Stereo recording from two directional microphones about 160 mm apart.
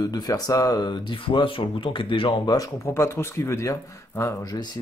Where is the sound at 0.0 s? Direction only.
25° left (ahead or behind).